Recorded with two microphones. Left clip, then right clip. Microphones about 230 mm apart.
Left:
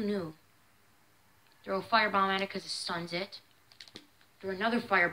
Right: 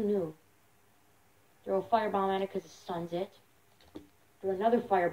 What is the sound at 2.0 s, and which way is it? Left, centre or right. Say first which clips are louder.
Speech: left 2 dB; left.